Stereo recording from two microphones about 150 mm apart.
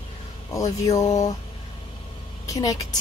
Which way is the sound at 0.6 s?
20° left (ahead or behind).